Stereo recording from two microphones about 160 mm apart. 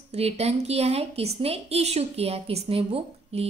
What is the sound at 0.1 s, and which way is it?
A woman's voice, 40° right (ahead or behind).